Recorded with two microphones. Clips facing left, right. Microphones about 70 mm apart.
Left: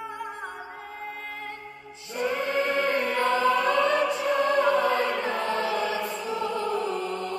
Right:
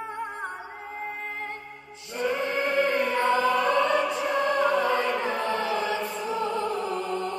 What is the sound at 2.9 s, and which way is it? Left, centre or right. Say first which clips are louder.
Chant: right 1 dB; right.